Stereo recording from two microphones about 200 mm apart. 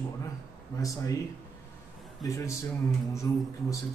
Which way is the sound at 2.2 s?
15° left (ahead or behind).